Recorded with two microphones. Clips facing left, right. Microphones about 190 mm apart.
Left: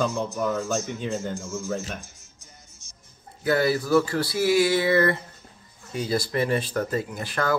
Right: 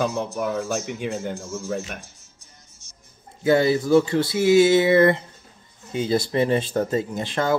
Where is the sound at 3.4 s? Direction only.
25° right (ahead or behind).